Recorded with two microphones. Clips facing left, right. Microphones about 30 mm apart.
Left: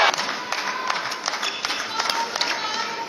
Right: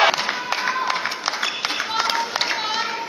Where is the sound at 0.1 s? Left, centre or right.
Centre.